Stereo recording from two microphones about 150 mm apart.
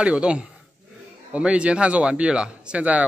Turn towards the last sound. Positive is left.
turn(degrees=-10)  # may be behind; listen again after turning